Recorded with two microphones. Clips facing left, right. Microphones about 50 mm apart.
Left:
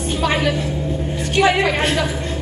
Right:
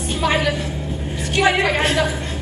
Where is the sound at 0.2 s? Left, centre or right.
Right.